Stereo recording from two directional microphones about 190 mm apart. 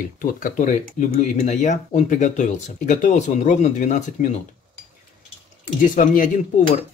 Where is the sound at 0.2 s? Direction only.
45° left (ahead or behind).